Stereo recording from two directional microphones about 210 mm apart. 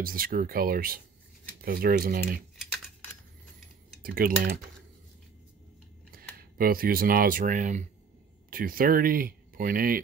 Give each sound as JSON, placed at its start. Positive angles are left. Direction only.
{"t": 0.0, "sound": "speech", "side_deg": -45}
{"t": 4.0, "sound": "speech", "side_deg": -45}
{"t": 6.1, "sound": "a sound", "side_deg": -45}
{"t": 6.6, "sound": "speech", "side_deg": -45}